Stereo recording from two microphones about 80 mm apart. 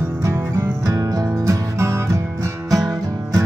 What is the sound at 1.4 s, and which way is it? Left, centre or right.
Music, right.